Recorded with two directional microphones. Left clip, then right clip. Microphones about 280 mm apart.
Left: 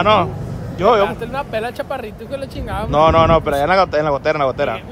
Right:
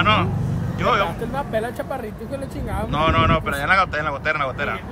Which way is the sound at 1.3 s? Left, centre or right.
Centre.